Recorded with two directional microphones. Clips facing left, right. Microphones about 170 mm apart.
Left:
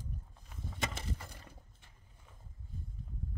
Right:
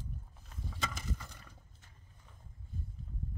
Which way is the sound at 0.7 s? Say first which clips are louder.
Left 1 dB; 30° left (ahead or behind).